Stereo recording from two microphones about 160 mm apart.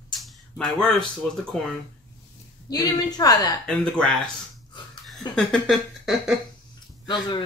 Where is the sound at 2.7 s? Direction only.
25° left (ahead or behind).